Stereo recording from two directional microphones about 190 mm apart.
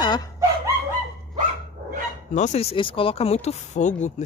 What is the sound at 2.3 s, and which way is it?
Speech, 35° left (ahead or behind).